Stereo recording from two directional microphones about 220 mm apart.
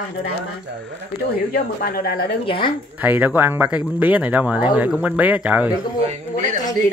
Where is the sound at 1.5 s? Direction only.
45° left (ahead or behind).